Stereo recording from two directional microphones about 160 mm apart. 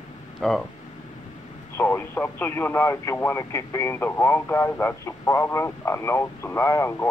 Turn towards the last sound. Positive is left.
turn(degrees=15)  # may be behind; listen again after turning